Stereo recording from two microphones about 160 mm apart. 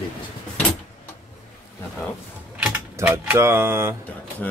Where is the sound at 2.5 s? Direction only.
10° right (ahead or behind).